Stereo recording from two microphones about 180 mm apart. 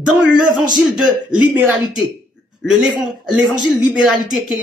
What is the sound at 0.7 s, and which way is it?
Speech, 5° right (ahead or behind).